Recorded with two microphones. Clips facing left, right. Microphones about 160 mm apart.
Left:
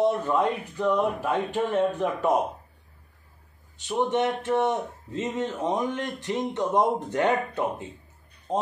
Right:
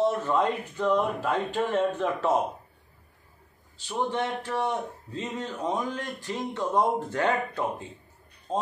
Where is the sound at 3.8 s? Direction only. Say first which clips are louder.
Left 4 dB; 20° left (ahead or behind).